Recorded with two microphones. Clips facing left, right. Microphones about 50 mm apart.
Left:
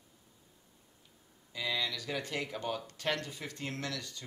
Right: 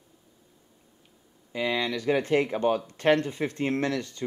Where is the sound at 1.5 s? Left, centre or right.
Right.